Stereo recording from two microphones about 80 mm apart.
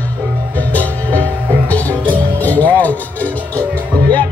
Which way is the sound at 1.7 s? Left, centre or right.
Left.